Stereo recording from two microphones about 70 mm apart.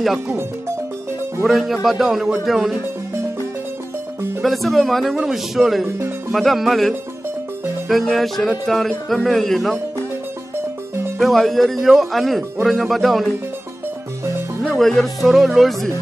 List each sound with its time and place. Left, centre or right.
0.0 s speech: centre
1.4 s speech: centre
4.4 s speech: centre
5.9 s music: right
6.3 s speech: centre
7.9 s speech: centre
11.1 s speech: centre
14.6 s speech: centre